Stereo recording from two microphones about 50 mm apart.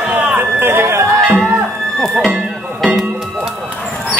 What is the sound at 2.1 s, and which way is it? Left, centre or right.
Music, centre.